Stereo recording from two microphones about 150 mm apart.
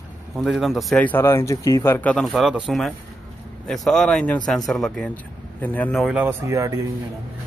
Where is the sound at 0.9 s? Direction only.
10° left (ahead or behind).